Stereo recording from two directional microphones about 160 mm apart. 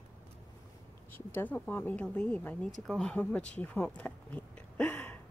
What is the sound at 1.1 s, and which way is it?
Speech, 10° left (ahead or behind).